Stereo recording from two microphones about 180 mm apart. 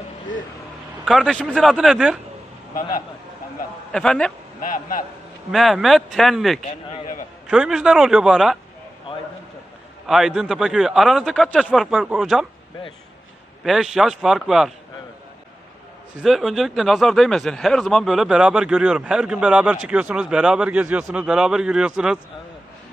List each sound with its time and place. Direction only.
1.0 s speech: centre (ahead or behind)
3.9 s speech: 5° left (ahead or behind)
4.6 s speech: 50° left (ahead or behind)
5.5 s speech: centre (ahead or behind)
10.0 s speech: centre (ahead or behind)
13.7 s speech: centre (ahead or behind)
16.2 s speech: centre (ahead or behind)